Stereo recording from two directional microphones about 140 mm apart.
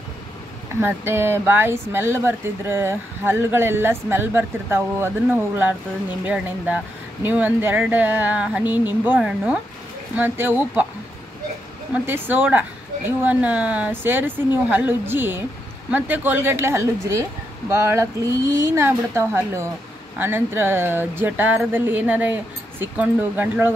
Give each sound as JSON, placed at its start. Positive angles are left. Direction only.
{"t": 0.7, "sound": "speech", "side_deg": -15}
{"t": 11.9, "sound": "speech", "side_deg": -10}